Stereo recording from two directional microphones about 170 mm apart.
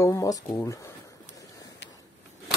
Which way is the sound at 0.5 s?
20° left (ahead or behind).